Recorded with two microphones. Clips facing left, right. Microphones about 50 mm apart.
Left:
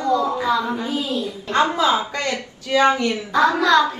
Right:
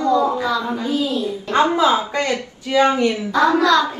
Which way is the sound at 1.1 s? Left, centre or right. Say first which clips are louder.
Right 2 dB; centre.